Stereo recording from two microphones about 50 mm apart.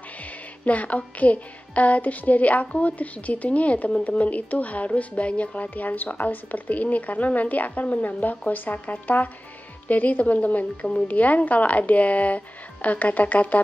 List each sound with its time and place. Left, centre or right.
0.7 s a woman's voice: left